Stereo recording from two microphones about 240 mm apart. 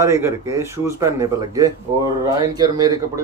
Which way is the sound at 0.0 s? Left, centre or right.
Centre.